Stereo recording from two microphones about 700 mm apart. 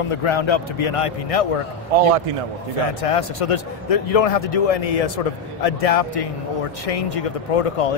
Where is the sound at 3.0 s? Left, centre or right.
Left.